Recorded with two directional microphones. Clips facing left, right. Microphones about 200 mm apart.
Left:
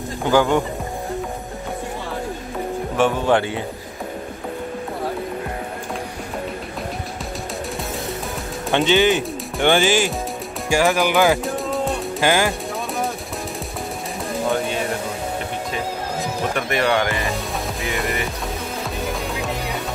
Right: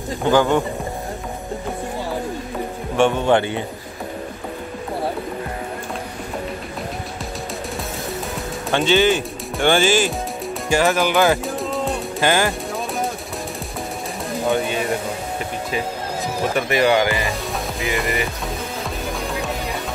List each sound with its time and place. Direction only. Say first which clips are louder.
0.2 s speech: right 1 dB; 10° left (ahead or behind)
3.0 s speech: right 2 dB; 5° left (ahead or behind)
8.7 s speech: even; 15° left (ahead or behind)
11.4 s music: left 1 dB; centre (ahead or behind)
12.2 s speech: even; 10° left (ahead or behind)
16.5 s speech: right 4 dB; 5° right (ahead or behind)
17.7 s music: right 3 dB; centre (ahead or behind)